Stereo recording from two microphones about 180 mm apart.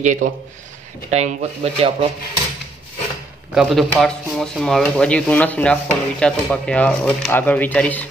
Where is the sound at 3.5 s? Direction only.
Centre (ahead or behind).